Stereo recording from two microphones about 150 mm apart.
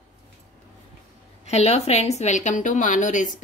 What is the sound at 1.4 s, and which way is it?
Speech, 45° left (ahead or behind).